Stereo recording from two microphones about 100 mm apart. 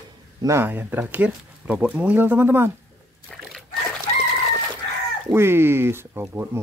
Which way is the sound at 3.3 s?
5° left (ahead or behind).